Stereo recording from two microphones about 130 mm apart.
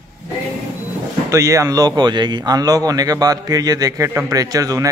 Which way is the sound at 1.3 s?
25° right (ahead or behind).